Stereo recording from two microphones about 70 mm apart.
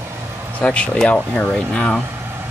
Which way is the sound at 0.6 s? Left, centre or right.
Centre.